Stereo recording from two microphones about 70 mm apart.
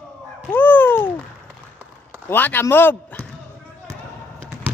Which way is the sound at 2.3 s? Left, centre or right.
Left.